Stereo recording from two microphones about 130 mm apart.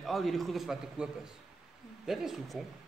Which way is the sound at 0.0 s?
Centre (ahead or behind).